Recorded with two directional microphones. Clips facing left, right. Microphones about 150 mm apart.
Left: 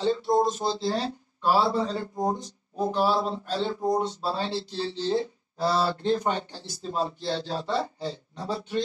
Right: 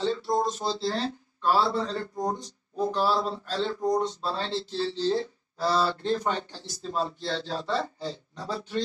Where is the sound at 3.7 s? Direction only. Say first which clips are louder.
Even; 25° left (ahead or behind).